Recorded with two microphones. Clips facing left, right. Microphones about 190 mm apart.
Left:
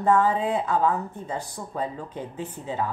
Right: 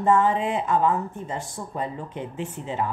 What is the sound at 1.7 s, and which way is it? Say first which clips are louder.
Speech: even; 20° right (ahead or behind).